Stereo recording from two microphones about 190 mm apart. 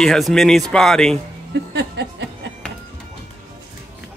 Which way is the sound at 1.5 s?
65° right (ahead or behind).